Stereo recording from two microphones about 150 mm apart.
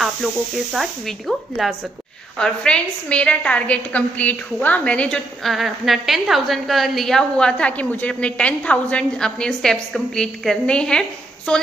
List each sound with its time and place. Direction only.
0.7 s a woman's voice: centre (ahead or behind)